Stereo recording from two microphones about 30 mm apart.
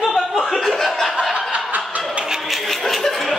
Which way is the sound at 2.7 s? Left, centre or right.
Centre.